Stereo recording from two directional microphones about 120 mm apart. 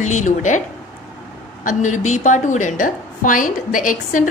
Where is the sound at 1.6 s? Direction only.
90° left.